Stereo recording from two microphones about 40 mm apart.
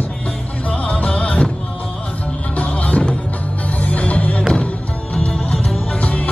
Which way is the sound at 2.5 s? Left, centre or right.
Left.